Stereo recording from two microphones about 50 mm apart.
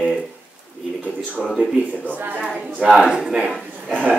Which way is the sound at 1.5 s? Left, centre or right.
Centre.